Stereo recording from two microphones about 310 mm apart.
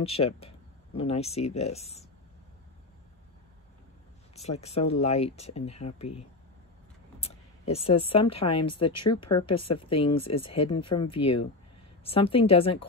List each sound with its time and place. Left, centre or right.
0.0 s speech: centre
4.4 s speech: centre
7.2 s a woman's voice: centre
9.2 s speech: left
9.6 s a woman's voice: centre